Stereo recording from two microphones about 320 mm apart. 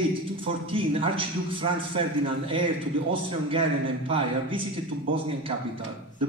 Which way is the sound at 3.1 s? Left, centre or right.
Centre.